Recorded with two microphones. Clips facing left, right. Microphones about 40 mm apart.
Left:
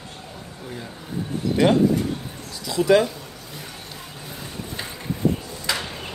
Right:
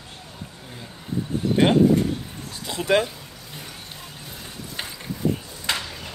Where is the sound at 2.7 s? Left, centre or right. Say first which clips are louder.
Left 4 dB; right.